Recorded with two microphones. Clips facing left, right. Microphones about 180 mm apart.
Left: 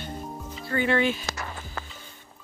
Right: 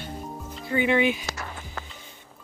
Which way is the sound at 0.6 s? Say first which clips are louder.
Right 2 dB; 15° right (ahead or behind).